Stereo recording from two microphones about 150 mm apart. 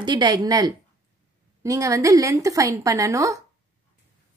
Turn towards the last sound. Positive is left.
turn(degrees=-20)  # may be behind; listen again after turning